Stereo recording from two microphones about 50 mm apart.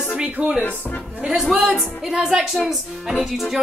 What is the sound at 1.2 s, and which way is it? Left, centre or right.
Speech, right.